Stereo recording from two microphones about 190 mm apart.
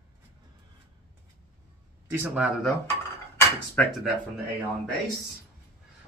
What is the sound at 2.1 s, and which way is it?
Speech, 10° right (ahead or behind).